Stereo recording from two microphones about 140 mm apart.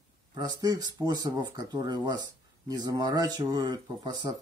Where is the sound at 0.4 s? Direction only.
30° right (ahead or behind).